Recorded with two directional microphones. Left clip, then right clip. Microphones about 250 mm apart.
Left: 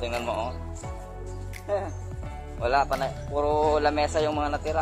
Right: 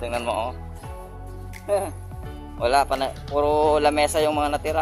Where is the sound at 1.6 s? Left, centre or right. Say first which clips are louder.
Right 5 dB; right.